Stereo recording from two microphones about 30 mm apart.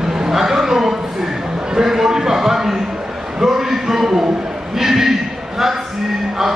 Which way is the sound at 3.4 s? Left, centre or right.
Centre.